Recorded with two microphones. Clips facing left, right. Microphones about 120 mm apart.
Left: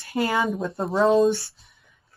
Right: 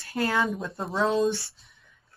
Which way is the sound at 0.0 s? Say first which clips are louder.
Left 3 dB; centre (ahead or behind).